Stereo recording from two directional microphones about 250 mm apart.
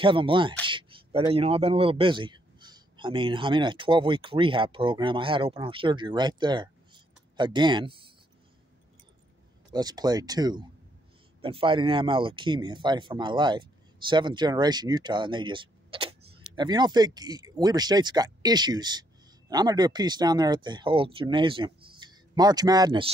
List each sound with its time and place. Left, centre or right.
0.0 s a man's voice: centre
9.7 s speech: centre